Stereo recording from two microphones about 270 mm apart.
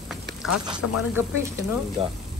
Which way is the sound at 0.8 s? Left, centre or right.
Left.